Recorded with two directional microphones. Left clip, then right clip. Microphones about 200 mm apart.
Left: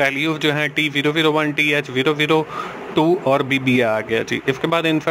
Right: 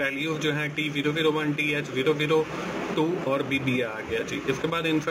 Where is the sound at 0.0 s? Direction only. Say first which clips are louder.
Left 9 dB; 50° left (ahead or behind).